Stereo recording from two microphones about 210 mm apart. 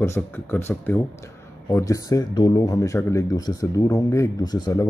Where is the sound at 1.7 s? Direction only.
15° left (ahead or behind).